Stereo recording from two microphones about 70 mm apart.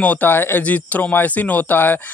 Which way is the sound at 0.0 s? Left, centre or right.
Left.